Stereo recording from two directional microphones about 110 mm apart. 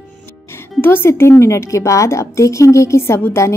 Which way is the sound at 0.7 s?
20° left (ahead or behind).